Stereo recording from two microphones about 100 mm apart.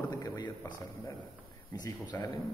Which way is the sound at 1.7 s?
40° left (ahead or behind).